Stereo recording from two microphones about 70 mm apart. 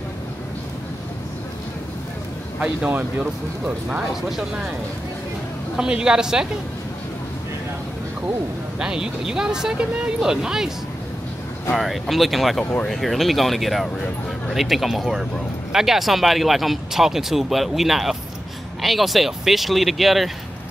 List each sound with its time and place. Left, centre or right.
2.6 s speech: right
4.1 s speech: centre
5.8 s speech: centre
8.7 s speech: centre
11.7 s speech: centre